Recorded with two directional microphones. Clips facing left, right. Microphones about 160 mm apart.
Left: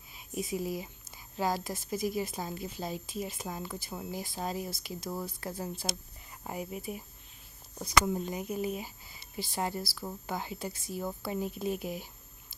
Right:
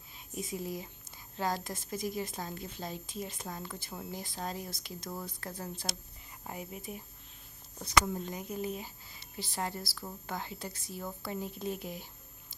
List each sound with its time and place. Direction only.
0.1 s speech: 10° left (ahead or behind)